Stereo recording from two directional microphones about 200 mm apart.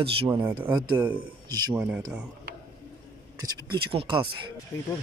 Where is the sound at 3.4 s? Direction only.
25° right (ahead or behind).